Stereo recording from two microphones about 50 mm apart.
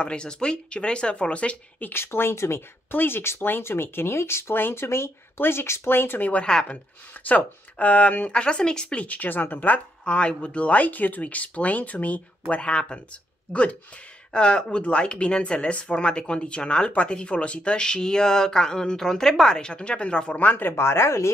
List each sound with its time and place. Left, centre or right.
0.0 s speech: centre
1.8 s speech: left
2.9 s speech: left
4.6 s speech: left
6.4 s speech: centre
7.2 s speech: left
8.4 s speech: centre
9.0 s speech: left
10.0 s speech: left
20.3 s speech: left
20.7 s speech: left